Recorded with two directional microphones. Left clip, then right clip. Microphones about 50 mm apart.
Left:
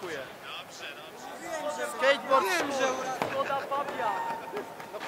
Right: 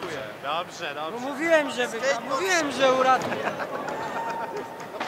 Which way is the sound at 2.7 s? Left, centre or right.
Left.